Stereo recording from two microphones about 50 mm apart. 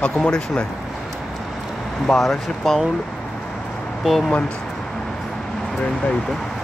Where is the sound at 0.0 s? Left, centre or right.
Centre.